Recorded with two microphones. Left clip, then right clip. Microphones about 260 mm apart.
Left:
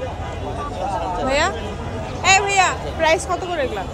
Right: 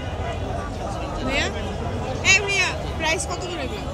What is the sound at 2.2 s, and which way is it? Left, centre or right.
Vehicle, centre.